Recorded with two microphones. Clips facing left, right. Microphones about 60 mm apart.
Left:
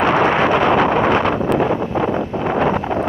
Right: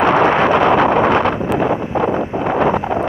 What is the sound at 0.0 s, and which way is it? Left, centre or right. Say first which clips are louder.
Wind noise: right 2 dB; right.